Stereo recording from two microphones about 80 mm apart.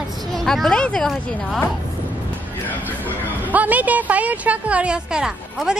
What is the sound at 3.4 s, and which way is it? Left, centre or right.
A woman's voice, centre.